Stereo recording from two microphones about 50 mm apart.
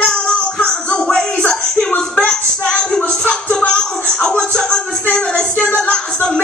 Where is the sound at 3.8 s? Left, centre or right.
Centre.